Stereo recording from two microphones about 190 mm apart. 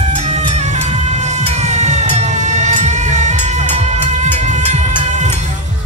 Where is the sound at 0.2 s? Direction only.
35° right (ahead or behind).